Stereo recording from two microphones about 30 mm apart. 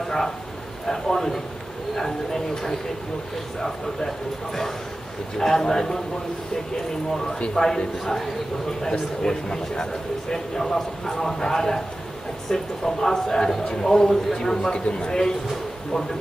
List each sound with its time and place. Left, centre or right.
0.8 s speech: centre
5.4 s speech: centre
7.5 s a man's voice: centre